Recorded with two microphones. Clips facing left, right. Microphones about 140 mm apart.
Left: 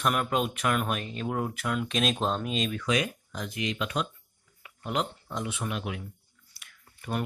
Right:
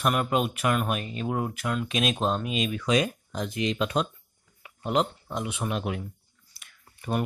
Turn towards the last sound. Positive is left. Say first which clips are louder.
# right 4 dB
turn(degrees=-25)  # may be behind; listen again after turning